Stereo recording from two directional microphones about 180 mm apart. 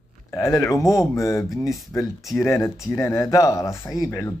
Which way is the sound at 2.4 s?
15° left (ahead or behind).